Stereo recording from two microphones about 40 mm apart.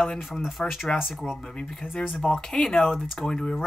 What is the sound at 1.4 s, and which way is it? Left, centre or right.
Speech, left.